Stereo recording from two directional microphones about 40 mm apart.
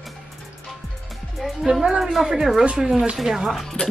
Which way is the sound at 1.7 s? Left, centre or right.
Centre.